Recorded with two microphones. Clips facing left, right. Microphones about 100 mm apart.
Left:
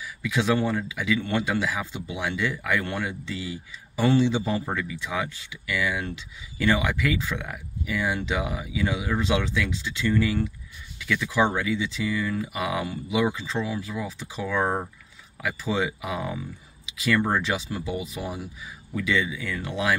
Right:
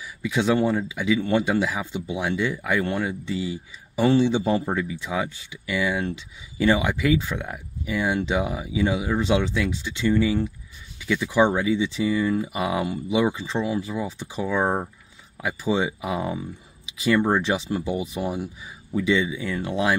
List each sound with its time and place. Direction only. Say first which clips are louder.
0.0 s speech: right 2 dB; 25° right (ahead or behind)